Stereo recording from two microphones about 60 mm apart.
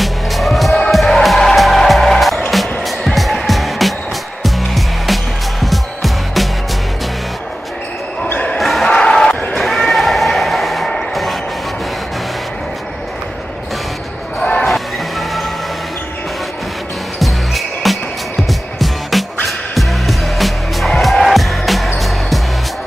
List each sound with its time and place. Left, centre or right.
0.0 s music: centre
8.5 s basketball bounce: centre
8.8 s basketball bounce: centre
9.6 s a sound: centre
14.4 s basketball bounce: centre
14.7 s music: centre
17.2 s basketball bounce: centre
18.5 s music: centre